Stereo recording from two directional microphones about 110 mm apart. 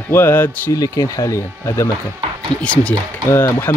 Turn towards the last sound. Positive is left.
turn(degrees=20)  # may be behind; listen again after turning